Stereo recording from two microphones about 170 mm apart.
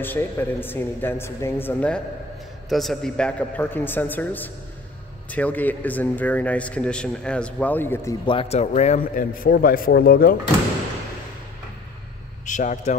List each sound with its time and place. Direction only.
0.0 s a man's voice: 10° left (ahead or behind)
8.3 s a man's voice: 35° left (ahead or behind); by 10.3 s 65° left (ahead or behind)
12.4 s speech: 45° left (ahead or behind)